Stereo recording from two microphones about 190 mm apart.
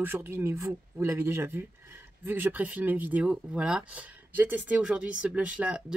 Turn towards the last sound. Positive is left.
turn(degrees=-5)  # may be behind; listen again after turning